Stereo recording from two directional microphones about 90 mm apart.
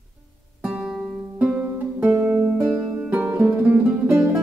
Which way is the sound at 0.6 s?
10° right (ahead or behind).